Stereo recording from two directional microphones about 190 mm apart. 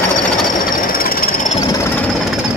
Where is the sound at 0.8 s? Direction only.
50° left (ahead or behind).